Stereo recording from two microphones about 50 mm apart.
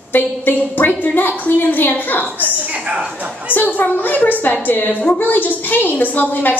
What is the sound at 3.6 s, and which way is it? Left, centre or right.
A woman's voice, left.